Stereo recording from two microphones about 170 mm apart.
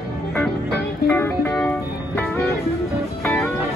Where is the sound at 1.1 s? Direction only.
15° left (ahead or behind).